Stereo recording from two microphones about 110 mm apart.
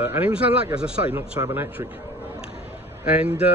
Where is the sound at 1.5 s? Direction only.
20° right (ahead or behind).